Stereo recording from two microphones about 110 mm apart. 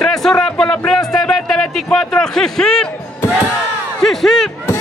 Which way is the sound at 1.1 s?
5° left (ahead or behind).